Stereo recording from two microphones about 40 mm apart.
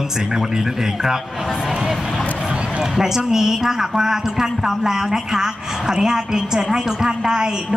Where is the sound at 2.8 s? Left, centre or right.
Centre.